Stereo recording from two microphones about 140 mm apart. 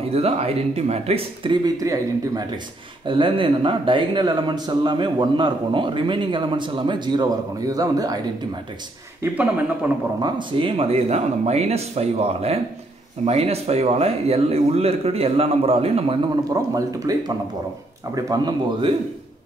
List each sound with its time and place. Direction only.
0.1 s a man's voice: 45° right (ahead or behind); by 8.2 s 25° right (ahead or behind)
9.8 s a man's voice: 10° right (ahead or behind)
10.2 s speech: 35° right (ahead or behind)
16.7 s speech: 25° right (ahead or behind)